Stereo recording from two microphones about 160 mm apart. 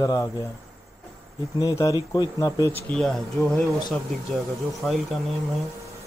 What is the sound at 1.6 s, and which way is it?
Speech, 20° left (ahead or behind).